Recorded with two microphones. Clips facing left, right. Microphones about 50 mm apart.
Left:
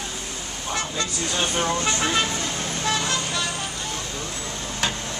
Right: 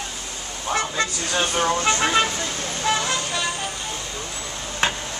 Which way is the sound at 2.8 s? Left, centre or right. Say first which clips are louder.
Right 3 dB; centre.